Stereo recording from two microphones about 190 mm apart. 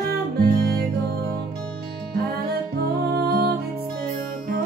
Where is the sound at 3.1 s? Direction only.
55° right (ahead or behind).